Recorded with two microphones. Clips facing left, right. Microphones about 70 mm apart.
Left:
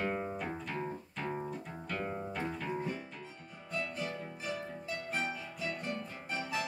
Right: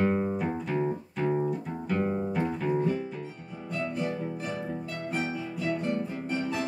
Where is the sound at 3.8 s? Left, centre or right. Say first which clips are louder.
Right 9 dB; centre.